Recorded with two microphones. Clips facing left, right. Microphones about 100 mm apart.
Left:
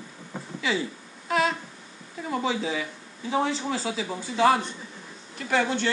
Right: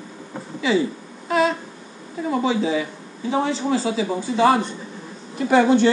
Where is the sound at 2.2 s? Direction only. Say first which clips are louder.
Right 6 dB; 5° right (ahead or behind).